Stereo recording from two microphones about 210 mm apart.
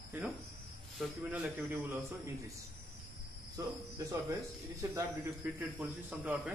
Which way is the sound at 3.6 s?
15° right (ahead or behind).